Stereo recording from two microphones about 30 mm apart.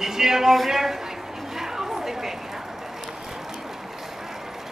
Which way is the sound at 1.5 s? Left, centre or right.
Centre.